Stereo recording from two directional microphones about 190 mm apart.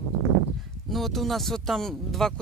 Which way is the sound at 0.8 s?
Centre (ahead or behind).